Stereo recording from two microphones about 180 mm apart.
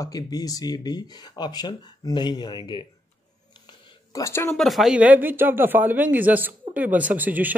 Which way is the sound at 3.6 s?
20° left (ahead or behind).